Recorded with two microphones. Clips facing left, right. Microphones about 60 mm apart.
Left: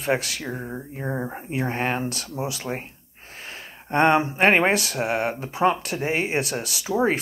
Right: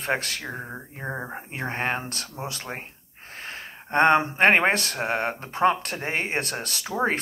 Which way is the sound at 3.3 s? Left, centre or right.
Right.